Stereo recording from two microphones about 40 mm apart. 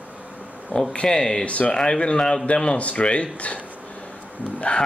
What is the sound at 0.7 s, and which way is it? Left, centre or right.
Speech, left.